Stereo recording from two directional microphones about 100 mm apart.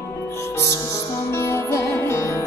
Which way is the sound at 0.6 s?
30° left (ahead or behind).